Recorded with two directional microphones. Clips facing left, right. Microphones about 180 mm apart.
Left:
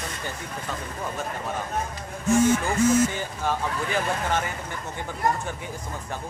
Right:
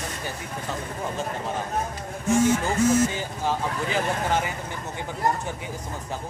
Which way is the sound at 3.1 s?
15° right (ahead or behind).